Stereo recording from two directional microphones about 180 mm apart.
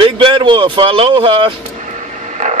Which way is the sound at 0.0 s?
30° right (ahead or behind).